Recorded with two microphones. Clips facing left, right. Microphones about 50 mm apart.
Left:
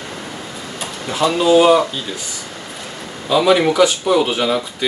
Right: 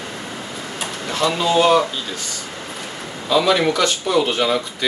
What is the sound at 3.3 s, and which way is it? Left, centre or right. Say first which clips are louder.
Speech: left 3 dB; centre.